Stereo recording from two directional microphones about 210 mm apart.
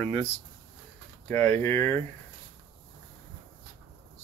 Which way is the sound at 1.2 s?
10° left (ahead or behind).